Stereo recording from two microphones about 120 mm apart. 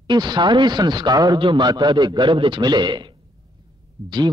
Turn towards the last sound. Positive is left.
turn(degrees=-40)  # may be behind; listen again after turning